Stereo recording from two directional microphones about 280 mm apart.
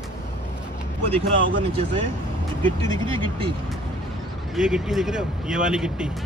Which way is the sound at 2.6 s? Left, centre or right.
Centre.